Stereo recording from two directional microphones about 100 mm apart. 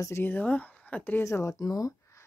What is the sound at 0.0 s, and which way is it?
Speech, 25° left (ahead or behind).